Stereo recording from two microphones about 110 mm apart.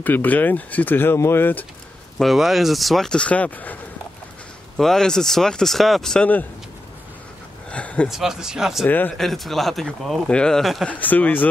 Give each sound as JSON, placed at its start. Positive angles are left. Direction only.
{"t": 0.0, "sound": "speech", "side_deg": 15}
{"t": 2.1, "sound": "speech", "side_deg": 0}
{"t": 4.7, "sound": "speech", "side_deg": 5}
{"t": 7.7, "sound": "speech", "side_deg": 10}
{"t": 8.1, "sound": "speech", "side_deg": -5}
{"t": 8.8, "sound": "speech", "side_deg": 15}
{"t": 9.2, "sound": "speech", "side_deg": 0}
{"t": 10.9, "sound": "speech", "side_deg": 15}